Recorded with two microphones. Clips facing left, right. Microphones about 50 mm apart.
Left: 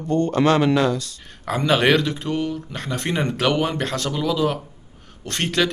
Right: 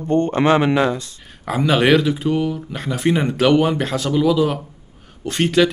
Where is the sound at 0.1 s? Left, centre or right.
Right.